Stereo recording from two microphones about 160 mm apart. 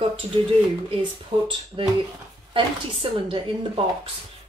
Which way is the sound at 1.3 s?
30° right (ahead or behind).